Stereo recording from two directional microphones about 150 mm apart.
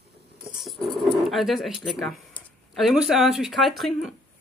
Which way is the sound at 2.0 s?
Centre (ahead or behind).